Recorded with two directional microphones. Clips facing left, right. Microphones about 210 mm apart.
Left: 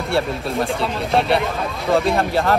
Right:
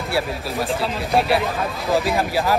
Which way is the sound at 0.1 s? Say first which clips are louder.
Left 3 dB; centre (ahead or behind).